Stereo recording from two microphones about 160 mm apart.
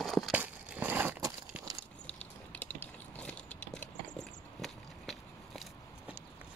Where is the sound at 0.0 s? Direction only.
Centre (ahead or behind).